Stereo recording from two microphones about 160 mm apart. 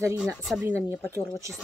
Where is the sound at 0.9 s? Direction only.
15° left (ahead or behind).